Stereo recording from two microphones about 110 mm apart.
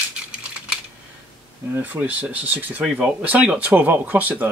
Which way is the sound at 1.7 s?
15° right (ahead or behind).